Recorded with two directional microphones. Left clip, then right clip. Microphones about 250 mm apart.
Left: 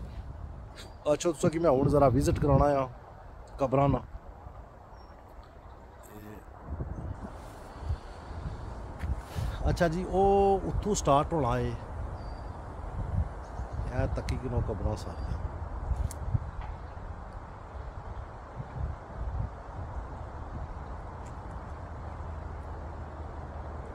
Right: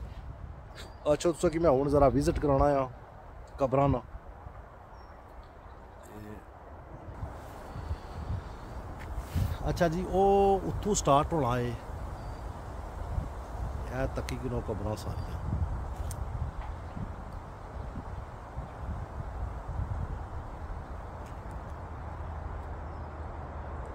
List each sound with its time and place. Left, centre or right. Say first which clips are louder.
0.7 s speech: even; centre
9.0 s speech: right 1 dB; centre
13.9 s speech: even; centre